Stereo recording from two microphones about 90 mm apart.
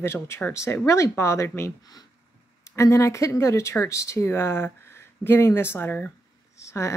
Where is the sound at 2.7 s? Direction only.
35° left (ahead or behind).